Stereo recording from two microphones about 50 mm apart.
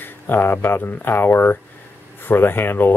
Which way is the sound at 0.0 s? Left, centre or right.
Left.